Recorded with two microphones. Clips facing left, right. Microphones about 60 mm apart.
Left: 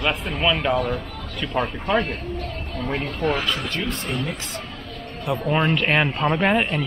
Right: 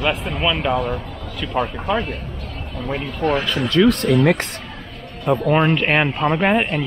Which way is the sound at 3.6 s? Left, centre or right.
Right.